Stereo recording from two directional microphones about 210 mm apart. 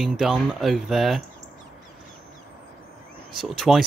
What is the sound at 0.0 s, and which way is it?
Speech, centre (ahead or behind).